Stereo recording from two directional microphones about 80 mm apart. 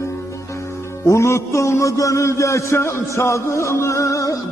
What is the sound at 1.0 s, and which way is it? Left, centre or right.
A man's voice, left.